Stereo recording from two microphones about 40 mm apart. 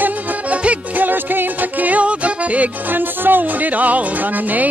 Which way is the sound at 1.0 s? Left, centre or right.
Right.